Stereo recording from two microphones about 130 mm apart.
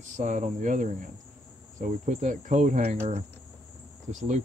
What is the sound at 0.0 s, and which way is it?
Cricket, 70° right (ahead or behind).